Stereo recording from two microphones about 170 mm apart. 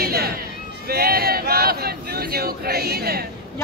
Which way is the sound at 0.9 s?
65° right (ahead or behind).